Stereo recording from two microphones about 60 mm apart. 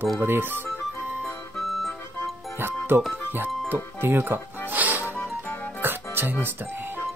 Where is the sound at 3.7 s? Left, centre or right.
Right.